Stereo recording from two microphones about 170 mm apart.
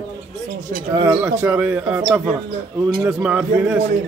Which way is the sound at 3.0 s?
5° right (ahead or behind).